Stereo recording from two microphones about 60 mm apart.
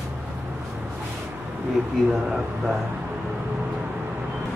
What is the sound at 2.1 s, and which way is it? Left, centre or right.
Speech, centre.